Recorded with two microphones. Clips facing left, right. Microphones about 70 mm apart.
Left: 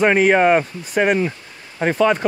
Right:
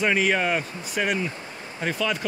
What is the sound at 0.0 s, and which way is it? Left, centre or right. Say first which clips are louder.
Speech: left 8 dB; left.